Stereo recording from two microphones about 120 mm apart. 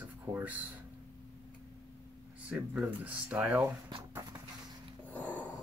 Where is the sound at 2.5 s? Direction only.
10° right (ahead or behind).